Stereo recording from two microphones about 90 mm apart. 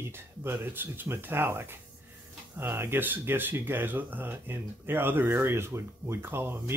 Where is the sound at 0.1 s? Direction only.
25° right (ahead or behind).